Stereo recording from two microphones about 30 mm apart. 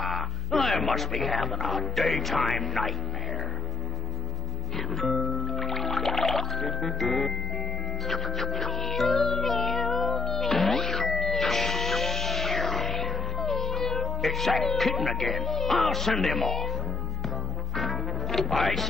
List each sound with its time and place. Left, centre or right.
0.0 s speech: centre
4.7 s music: centre
13.5 s speech: centre
17.7 s music: centre